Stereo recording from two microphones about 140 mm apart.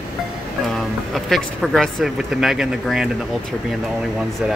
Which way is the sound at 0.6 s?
Centre (ahead or behind).